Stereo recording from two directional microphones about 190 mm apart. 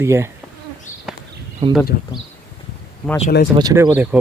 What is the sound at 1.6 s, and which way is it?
Speech, 35° right (ahead or behind).